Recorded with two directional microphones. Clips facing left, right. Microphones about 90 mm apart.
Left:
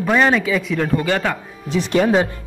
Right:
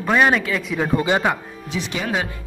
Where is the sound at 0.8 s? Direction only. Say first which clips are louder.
Right 4 dB; 15° right (ahead or behind).